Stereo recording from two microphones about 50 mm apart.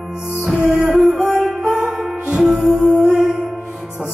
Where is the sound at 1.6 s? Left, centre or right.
Right.